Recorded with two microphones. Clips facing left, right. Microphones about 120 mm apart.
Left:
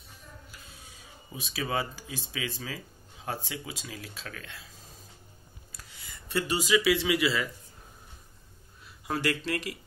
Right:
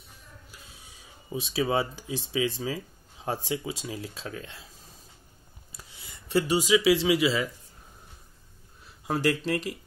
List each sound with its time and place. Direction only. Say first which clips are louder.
1.3 s speech: right 6 dB; 25° right (ahead or behind)
6.5 s speech: right 3 dB; 20° right (ahead or behind)
9.0 s speech: right 4 dB; 25° right (ahead or behind)